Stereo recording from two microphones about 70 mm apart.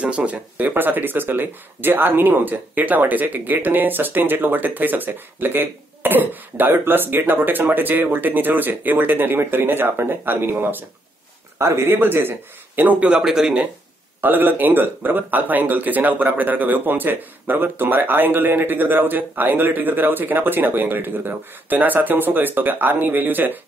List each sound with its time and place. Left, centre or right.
0.0 s speech: centre
11.5 s speech: right
13.1 s speech: centre
14.2 s speech: right